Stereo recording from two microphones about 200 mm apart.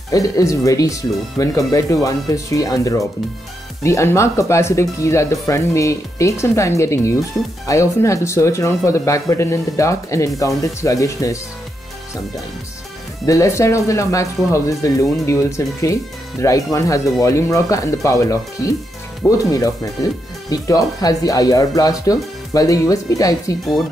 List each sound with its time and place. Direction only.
0.1 s speech: 15° left (ahead or behind)
13.2 s speech: 15° left (ahead or behind)